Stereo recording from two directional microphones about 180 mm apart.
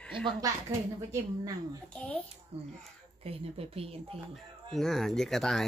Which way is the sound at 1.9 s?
5° left (ahead or behind).